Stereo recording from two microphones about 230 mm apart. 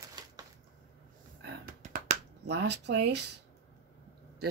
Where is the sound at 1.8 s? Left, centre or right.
Right.